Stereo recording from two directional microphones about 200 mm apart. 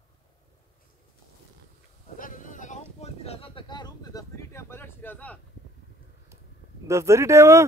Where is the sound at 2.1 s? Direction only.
40° left (ahead or behind); by 5.4 s 10° left (ahead or behind).